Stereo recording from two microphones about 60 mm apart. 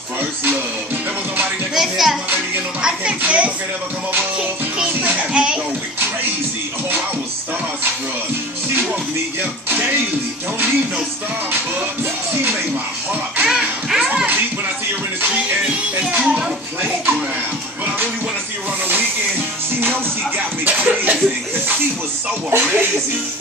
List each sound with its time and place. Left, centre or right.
1.8 s music: centre
3.3 s a sound: right
5.3 s bathtub: centre
13.5 s music: centre
16.0 s a sound: centre
19.8 s music: right
22.5 s speech: right